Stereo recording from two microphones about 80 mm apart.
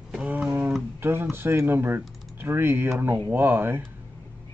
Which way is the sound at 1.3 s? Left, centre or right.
Right.